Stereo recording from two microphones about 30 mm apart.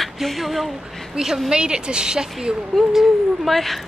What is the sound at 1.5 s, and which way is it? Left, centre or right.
A woman's voice, right.